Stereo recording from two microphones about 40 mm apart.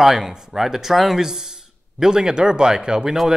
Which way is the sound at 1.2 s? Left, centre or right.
Centre.